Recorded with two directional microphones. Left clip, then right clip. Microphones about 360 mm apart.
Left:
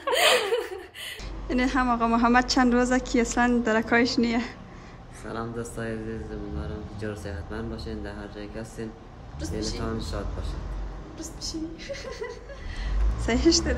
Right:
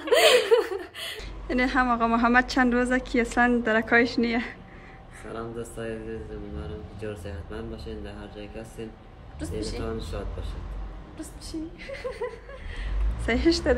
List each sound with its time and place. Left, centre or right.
0.0 s speech: centre
9.4 s speech: centre
11.1 s speech: centre
13.2 s speech: centre